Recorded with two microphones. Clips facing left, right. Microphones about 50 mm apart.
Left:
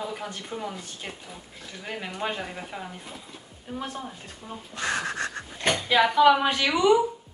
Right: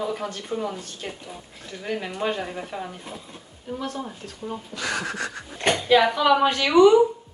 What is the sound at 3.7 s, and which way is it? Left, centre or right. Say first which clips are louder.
Speech: right 3 dB; centre.